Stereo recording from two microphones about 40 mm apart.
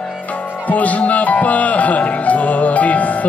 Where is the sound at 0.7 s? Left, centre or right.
Left.